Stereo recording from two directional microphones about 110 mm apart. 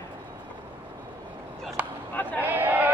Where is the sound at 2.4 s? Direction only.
15° right (ahead or behind).